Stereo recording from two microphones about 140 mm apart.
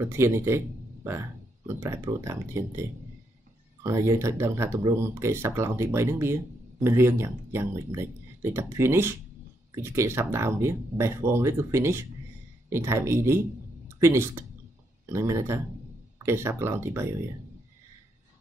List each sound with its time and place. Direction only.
0.0 s speech: 20° right (ahead or behind)
1.8 s speech: 20° right (ahead or behind)